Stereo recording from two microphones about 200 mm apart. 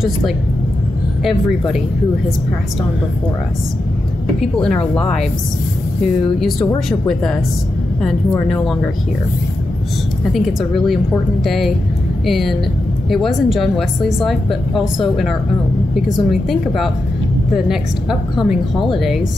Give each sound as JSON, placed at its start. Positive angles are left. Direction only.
{"t": 4.4, "sound": "a woman's voice", "side_deg": 5}
{"t": 6.9, "sound": "a woman's voice", "side_deg": 0}
{"t": 10.3, "sound": "a woman's voice", "side_deg": 0}
{"t": 18.3, "sound": "a woman's voice", "side_deg": 0}